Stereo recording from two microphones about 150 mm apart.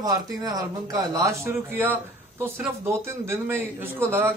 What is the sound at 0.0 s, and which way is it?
A man's voice, 25° right (ahead or behind).